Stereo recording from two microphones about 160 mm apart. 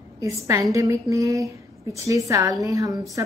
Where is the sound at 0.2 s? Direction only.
20° right (ahead or behind).